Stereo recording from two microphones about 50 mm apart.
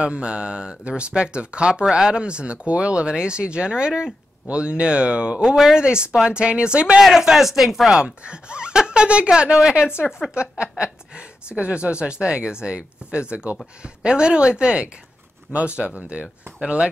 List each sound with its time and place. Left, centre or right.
0.0 s speech: right
5.4 s speech: centre
7.0 s speech: centre
7.9 s speech: centre